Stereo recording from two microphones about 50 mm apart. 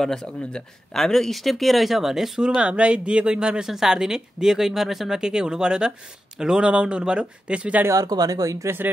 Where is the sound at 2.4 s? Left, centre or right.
Centre.